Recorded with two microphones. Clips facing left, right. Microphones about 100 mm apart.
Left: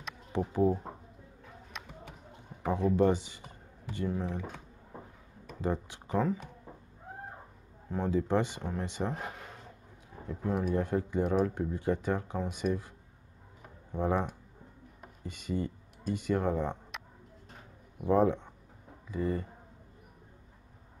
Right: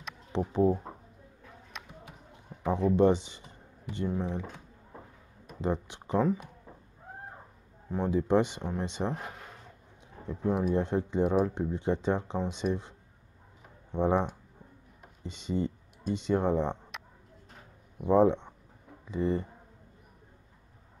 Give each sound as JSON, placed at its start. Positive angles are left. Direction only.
{"t": 0.5, "sound": "speech", "side_deg": -15}
{"t": 1.7, "sound": "a sound", "side_deg": 0}
{"t": 2.6, "sound": "speech", "side_deg": -20}
{"t": 5.6, "sound": "speech", "side_deg": -20}
{"t": 7.9, "sound": "speech", "side_deg": -20}
{"t": 10.2, "sound": "speech", "side_deg": -20}
{"t": 13.9, "sound": "speech", "side_deg": -20}
{"t": 15.2, "sound": "speech", "side_deg": -20}
{"t": 16.9, "sound": "a sound", "side_deg": 0}
{"t": 18.0, "sound": "speech", "side_deg": -20}